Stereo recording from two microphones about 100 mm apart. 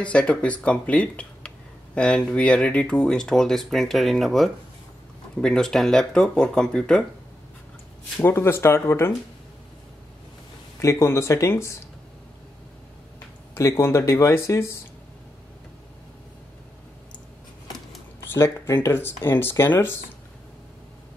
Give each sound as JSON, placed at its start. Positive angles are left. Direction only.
{"t": 0.0, "sound": "speech", "side_deg": 10}
{"t": 8.2, "sound": "speech", "side_deg": 20}
{"t": 10.8, "sound": "speech", "side_deg": 30}
{"t": 13.6, "sound": "speech", "side_deg": 30}
{"t": 18.3, "sound": "speech", "side_deg": 25}